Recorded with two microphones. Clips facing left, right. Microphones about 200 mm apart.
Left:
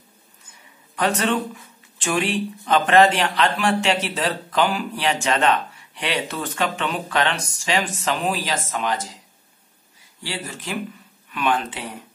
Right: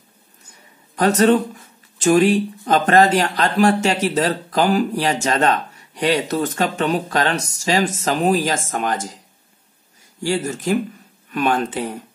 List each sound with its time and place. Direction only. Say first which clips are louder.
0.5 s speech: right 2 dB; 40° right (ahead or behind)
10.2 s speech: right 10 dB; 45° right (ahead or behind)